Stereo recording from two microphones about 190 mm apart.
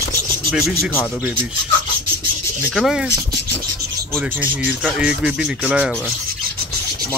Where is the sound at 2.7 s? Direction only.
Centre (ahead or behind).